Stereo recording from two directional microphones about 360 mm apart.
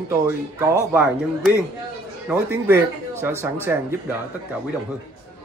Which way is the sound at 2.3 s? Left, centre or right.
Centre.